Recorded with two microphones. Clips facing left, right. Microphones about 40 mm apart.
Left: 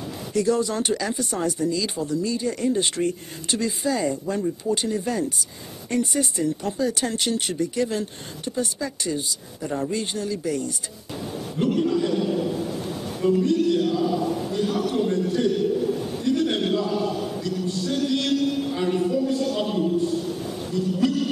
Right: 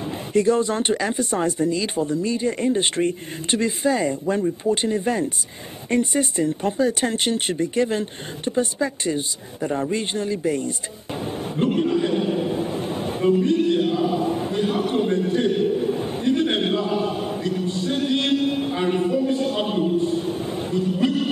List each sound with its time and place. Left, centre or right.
0.0 s speech: right
11.3 s a sound: right
13.4 s chant: right